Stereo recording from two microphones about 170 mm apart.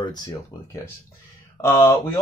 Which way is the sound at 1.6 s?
15° left (ahead or behind).